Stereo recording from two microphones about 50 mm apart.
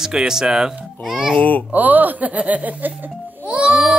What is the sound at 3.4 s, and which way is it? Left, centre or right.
Music, centre.